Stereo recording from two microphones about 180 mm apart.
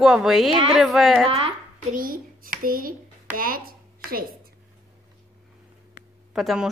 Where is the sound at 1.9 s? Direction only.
50° right (ahead or behind).